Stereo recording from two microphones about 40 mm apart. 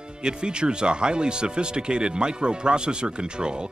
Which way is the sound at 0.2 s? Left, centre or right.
Right.